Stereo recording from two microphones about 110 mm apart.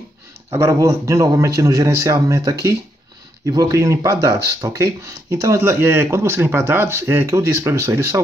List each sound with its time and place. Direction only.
0.5 s speech: 30° right (ahead or behind)